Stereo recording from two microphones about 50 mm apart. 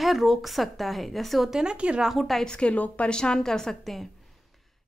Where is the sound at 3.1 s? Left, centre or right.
Centre.